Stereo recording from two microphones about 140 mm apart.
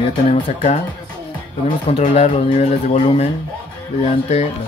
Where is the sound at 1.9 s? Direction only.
45° left (ahead or behind).